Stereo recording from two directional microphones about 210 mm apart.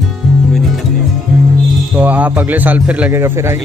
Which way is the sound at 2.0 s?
5° right (ahead or behind).